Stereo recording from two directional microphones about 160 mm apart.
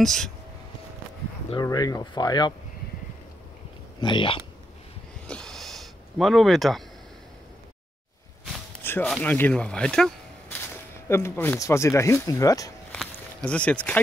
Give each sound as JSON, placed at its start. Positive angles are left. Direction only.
{"t": 0.0, "sound": "speech", "side_deg": 5}
{"t": 1.6, "sound": "speech", "side_deg": 25}
{"t": 4.0, "sound": "speech", "side_deg": 30}
{"t": 5.2, "sound": "a sound", "side_deg": 5}
{"t": 8.8, "sound": "music", "side_deg": 15}
{"t": 9.1, "sound": "speech", "side_deg": 10}
{"t": 11.1, "sound": "speech", "side_deg": 15}
{"t": 12.9, "sound": "a sound", "side_deg": 5}